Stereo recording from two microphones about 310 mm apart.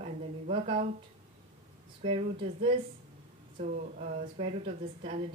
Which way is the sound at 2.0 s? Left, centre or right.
Centre.